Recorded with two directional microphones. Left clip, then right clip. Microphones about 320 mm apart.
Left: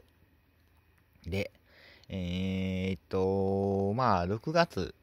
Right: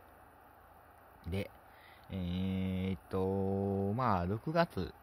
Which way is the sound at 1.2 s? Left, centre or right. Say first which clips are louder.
Left 6 dB; centre.